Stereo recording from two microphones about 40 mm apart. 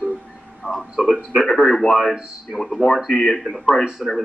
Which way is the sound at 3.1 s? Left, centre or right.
Centre.